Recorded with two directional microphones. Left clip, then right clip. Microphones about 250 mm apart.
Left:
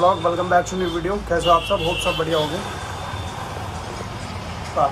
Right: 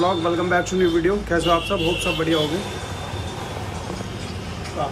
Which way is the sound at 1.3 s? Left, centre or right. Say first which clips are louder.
Left 4 dB; left.